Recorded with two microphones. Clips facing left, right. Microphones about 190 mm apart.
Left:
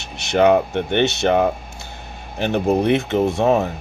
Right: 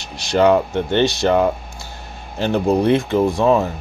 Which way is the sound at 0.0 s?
20° left (ahead or behind).